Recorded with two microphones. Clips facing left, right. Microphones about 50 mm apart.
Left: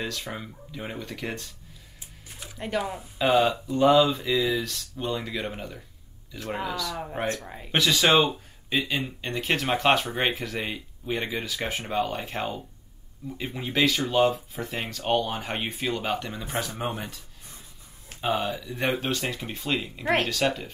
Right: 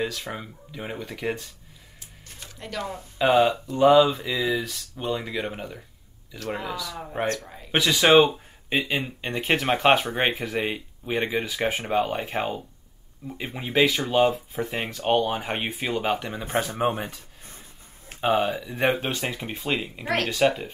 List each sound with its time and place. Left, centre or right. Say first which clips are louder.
0.0 s speech: right 3 dB; centre
2.2 s music: left 1 dB; centre
2.8 s speech: left 1 dB; centre
3.2 s speech: right 2 dB; centre
7.4 s speech: left 2 dB; centre
7.7 s speech: right 4 dB; centre
16.4 s speech: right 7 dB; right
18.2 s speech: right 4 dB; centre